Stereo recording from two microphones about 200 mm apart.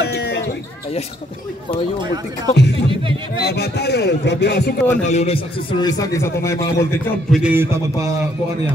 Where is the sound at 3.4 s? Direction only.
55° left (ahead or behind).